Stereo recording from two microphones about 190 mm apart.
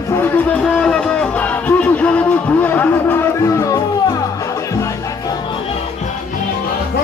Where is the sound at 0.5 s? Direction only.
5° left (ahead or behind).